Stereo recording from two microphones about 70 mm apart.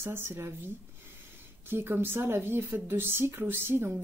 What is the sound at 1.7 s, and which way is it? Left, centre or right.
Speech, right.